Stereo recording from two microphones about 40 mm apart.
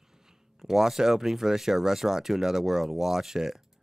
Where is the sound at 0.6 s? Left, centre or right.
Centre.